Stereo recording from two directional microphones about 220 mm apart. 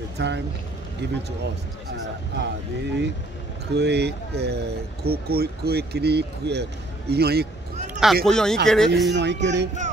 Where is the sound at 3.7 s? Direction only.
50° right (ahead or behind).